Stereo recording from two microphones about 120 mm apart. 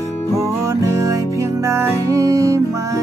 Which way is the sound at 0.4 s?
25° right (ahead or behind).